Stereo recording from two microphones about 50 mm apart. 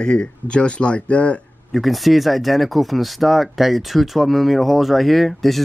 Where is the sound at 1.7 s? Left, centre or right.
Centre.